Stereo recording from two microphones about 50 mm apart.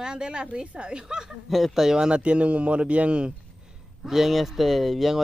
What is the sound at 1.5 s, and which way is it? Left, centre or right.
A man's voice, centre.